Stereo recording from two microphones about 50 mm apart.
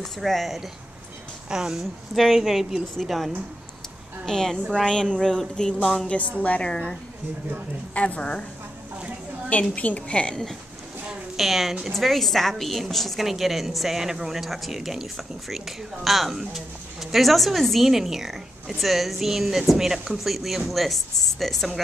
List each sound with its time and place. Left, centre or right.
0.0 s a woman's voice: centre
1.5 s speech: centre
1.8 s a woman's voice: centre
3.0 s a woman's voice: centre
4.3 s speech: centre
6.0 s a woman's voice: left
6.6 s speech: centre
7.9 s a woman's voice: left
9.5 s a woman's voice: left
11.3 s a woman's voice: centre